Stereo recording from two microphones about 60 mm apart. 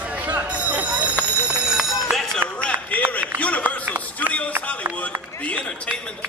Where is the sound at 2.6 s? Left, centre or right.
Left.